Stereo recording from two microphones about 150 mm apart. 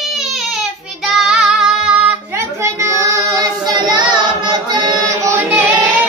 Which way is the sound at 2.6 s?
20° right (ahead or behind).